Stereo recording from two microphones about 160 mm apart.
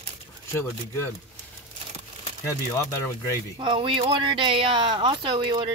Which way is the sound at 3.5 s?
30° right (ahead or behind).